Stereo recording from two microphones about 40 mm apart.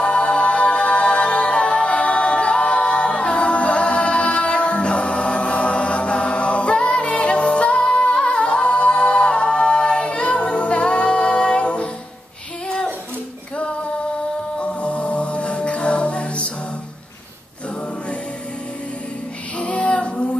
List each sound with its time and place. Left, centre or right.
0.0 s music: left
12.6 s a sound: centre
14.6 s music: left
19.6 s female singing: left